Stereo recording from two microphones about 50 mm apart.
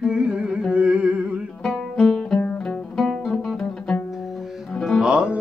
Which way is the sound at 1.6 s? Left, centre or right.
Centre.